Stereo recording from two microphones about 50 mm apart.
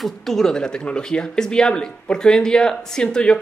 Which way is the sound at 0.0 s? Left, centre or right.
Centre.